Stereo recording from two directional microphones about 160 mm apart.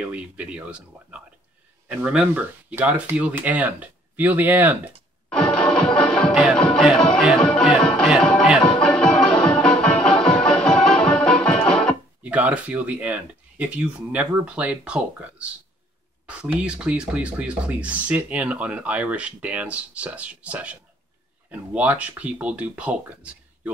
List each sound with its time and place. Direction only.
0.0 s speech: 10° right (ahead or behind)
5.3 s music: 5° left (ahead or behind)
8.1 s speech: 5° left (ahead or behind)
8.8 s music: 5° left (ahead or behind)
12.2 s speech: 10° right (ahead or behind)
16.5 s speech: 5° right (ahead or behind)